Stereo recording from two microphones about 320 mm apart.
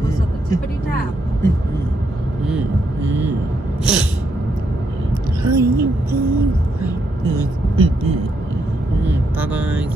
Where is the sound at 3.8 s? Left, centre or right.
Centre.